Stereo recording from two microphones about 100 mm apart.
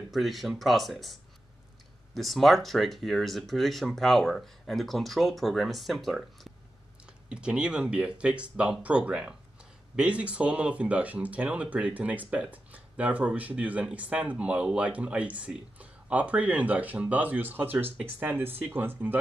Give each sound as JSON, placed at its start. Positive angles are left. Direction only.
{"t": 0.1, "sound": "speech", "side_deg": 0}
{"t": 2.1, "sound": "speech", "side_deg": 0}